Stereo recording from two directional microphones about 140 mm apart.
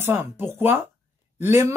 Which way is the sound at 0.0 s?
15° right (ahead or behind).